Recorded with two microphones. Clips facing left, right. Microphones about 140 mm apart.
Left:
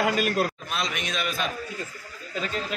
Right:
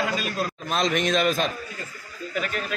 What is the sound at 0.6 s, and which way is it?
Speech, 45° right (ahead or behind).